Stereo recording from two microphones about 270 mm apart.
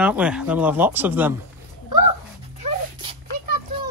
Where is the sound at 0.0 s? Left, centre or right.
Centre.